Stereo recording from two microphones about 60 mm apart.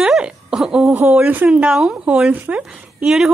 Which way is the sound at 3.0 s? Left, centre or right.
Centre.